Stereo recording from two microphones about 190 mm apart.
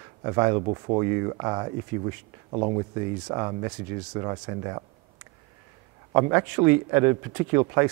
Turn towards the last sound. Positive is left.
turn(degrees=-15)  # may be behind; listen again after turning